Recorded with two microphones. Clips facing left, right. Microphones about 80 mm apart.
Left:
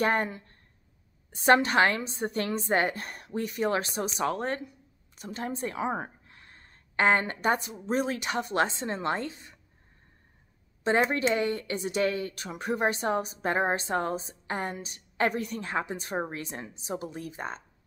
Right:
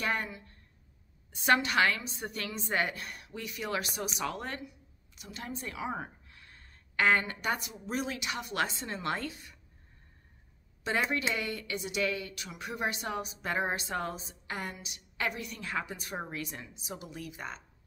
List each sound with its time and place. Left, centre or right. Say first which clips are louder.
0.0 s a woman's voice: left 7 dB; left
10.8 s a woman's voice: left 6 dB; left